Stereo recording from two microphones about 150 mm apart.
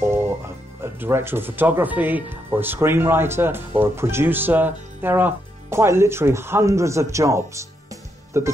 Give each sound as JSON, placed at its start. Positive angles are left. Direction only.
{"t": 0.9, "sound": "speech", "side_deg": -15}